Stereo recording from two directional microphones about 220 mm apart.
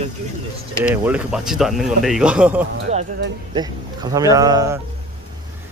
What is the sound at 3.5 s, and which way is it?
Speech, 15° right (ahead or behind).